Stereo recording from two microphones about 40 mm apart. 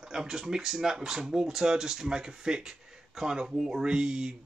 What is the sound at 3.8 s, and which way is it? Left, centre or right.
Speech, centre.